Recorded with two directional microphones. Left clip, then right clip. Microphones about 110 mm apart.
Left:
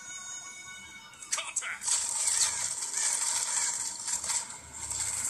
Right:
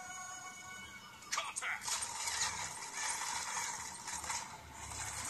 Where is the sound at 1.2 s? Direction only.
40° right (ahead or behind).